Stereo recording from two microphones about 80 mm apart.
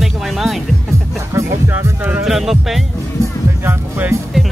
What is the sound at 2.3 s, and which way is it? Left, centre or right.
Speech, centre.